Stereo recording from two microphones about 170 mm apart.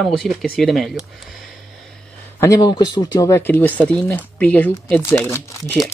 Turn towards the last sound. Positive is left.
turn(degrees=15)  # may be behind; listen again after turning